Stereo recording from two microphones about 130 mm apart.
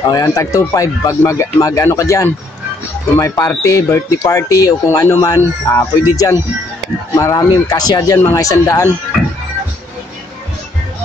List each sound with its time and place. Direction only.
0.1 s speech: 25° left (ahead or behind)